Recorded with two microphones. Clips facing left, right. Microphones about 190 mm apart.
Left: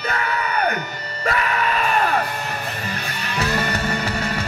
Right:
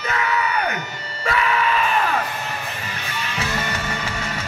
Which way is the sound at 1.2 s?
45° left (ahead or behind).